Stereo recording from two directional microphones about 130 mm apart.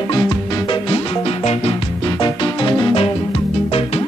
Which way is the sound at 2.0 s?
35° left (ahead or behind).